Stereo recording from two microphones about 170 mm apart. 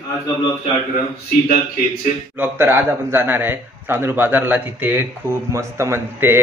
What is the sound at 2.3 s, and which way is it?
A man's voice, 10° right (ahead or behind).